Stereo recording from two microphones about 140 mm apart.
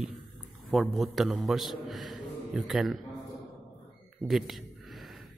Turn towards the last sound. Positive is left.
turn(degrees=0)  # may be behind; listen again after turning